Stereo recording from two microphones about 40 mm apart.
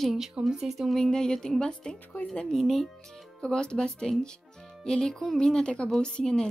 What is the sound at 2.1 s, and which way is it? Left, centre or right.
Speech, left.